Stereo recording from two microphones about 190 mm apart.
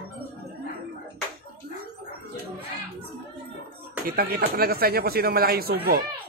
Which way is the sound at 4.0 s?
50° right (ahead or behind).